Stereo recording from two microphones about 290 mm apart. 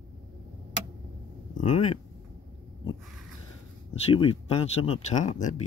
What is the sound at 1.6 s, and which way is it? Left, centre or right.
Speech, left.